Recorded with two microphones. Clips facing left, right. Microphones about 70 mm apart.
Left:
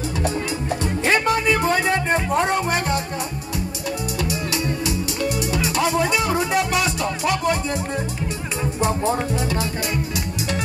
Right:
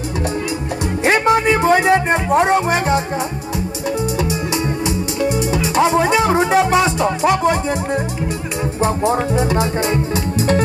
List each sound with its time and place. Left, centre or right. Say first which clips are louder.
1.0 s music: right 5 dB; right
5.2 s music: right 5 dB; right
9.0 s music: right 5 dB; right